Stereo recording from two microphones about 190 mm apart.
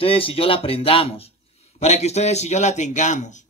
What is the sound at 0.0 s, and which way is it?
A man's voice, 30° left (ahead or behind).